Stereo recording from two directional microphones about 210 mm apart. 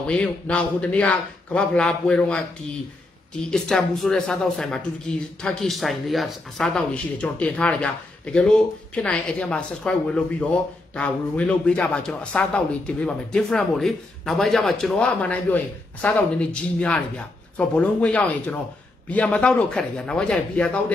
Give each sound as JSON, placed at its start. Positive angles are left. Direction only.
{"t": 0.0, "sound": "speech", "side_deg": 5}
{"t": 3.4, "sound": "speech", "side_deg": 0}